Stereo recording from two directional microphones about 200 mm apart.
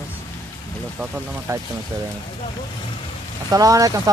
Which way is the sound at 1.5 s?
15° right (ahead or behind).